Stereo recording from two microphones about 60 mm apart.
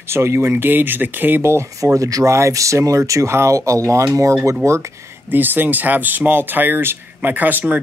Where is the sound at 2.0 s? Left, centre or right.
Right.